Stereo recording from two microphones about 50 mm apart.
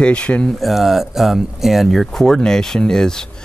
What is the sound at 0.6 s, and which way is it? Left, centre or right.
Speech, centre.